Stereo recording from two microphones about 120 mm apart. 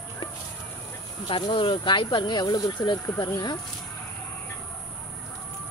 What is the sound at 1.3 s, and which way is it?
Speech, 45° left (ahead or behind).